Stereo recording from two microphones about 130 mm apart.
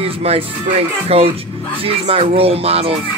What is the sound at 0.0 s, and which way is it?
Speech, 50° right (ahead or behind).